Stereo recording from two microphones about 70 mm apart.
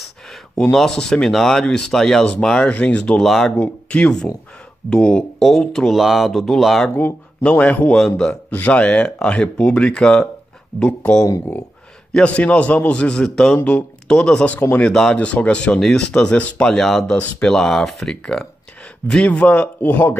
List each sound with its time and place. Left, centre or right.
0.6 s speech: centre
3.3 s speech: centre
3.5 s speech: left
4.0 s speech: centre
5.9 s speech: centre
7.4 s speech: centre
7.9 s speech: centre
8.3 s speech: left
14.5 s speech: left
14.9 s speech: centre
15.1 s speech: centre
18.1 s speech: centre